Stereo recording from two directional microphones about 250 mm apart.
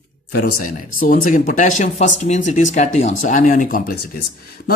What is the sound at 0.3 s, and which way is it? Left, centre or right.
Speech, left.